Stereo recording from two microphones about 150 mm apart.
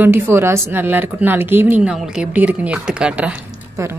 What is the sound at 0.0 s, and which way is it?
Speech, 15° right (ahead or behind).